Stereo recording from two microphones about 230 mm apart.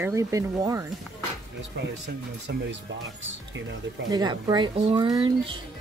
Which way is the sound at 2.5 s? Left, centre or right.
Right.